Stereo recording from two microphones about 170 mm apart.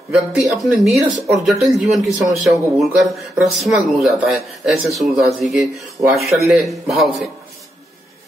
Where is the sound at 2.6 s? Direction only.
20° right (ahead or behind).